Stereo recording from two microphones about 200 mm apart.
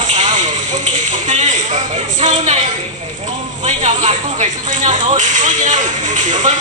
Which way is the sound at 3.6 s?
35° right (ahead or behind).